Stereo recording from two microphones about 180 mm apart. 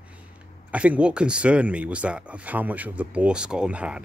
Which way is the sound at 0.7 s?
5° right (ahead or behind).